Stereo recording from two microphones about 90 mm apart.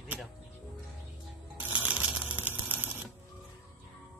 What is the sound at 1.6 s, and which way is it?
Typewriter, 15° right (ahead or behind).